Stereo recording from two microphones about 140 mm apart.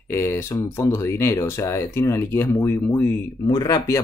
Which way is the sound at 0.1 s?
15° left (ahead or behind).